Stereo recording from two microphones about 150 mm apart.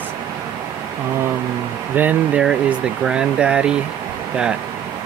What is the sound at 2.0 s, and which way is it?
Speech, 10° right (ahead or behind).